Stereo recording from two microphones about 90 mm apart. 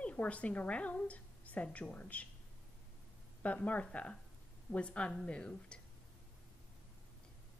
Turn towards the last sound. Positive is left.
turn(degrees=10)  # may be behind; listen again after turning